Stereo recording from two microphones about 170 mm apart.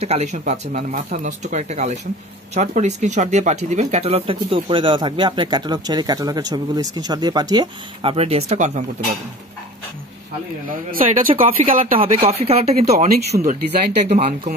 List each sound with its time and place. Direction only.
0.0 s speech: 40° right (ahead or behind)
10.7 s speech: 50° right (ahead or behind)
11.9 s speech: 35° right (ahead or behind)